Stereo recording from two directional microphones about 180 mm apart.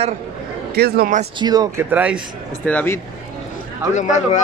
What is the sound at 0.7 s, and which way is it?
Speech, 60° right (ahead or behind).